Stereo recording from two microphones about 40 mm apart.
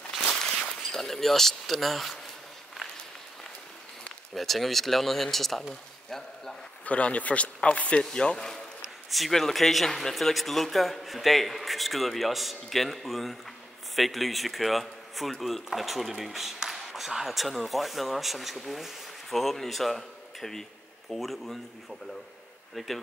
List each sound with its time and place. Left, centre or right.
0.6 s speech: centre
4.4 s speech: centre
6.9 s speech: left
9.3 s speech: centre
22.8 s speech: centre